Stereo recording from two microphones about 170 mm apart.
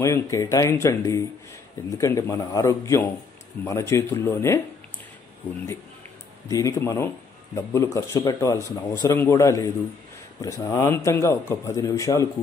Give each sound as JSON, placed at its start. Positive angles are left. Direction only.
{"t": 0.0, "sound": "speech", "side_deg": 20}
{"t": 6.5, "sound": "speech", "side_deg": 20}